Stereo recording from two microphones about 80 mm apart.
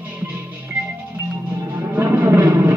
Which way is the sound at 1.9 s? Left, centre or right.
Right.